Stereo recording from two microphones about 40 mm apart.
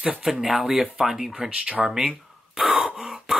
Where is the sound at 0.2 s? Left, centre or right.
Centre.